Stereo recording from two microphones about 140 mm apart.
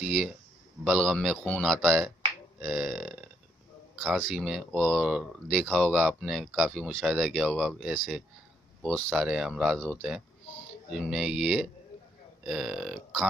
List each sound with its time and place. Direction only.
0.0 s speech: centre (ahead or behind)